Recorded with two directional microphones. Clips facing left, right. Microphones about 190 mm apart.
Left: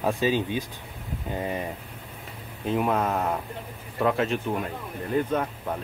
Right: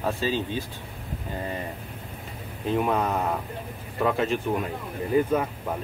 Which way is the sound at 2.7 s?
Centre (ahead or behind).